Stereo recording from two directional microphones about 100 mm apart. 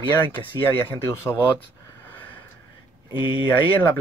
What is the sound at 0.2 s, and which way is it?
Speech, 20° left (ahead or behind).